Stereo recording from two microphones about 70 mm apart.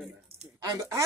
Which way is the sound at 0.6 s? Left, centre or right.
Right.